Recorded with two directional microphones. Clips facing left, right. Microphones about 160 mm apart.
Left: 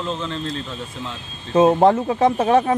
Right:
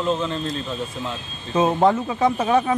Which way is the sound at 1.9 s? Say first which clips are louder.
Left 3 dB; 40° left (ahead or behind).